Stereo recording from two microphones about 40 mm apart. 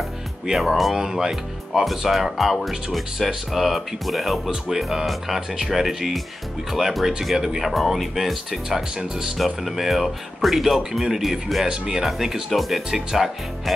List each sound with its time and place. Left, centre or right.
0.6 s speech: centre
0.9 s speech: centre
8.6 s speech: centre
11.6 s speech: centre
12.0 s speech: centre